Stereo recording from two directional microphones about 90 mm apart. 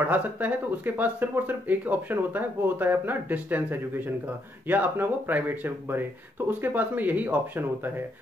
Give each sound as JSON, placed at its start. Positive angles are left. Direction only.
{"t": 0.0, "sound": "speech", "side_deg": -20}